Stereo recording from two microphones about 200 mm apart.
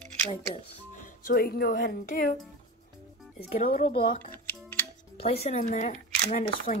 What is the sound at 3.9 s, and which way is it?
Speech, 25° left (ahead or behind).